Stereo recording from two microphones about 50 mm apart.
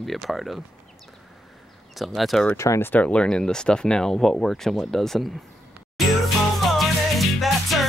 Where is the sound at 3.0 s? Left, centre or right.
Centre.